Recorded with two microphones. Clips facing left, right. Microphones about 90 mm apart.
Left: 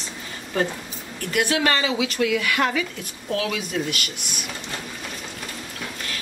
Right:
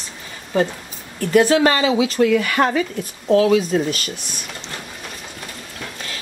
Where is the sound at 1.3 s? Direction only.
35° right (ahead or behind).